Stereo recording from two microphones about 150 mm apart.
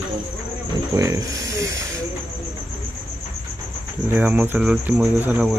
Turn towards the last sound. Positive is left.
turn(degrees=-10)  # may be behind; listen again after turning